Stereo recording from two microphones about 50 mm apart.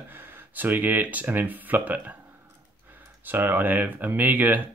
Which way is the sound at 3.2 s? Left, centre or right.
Right.